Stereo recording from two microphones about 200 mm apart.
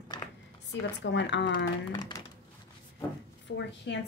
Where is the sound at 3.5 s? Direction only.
60° left (ahead or behind).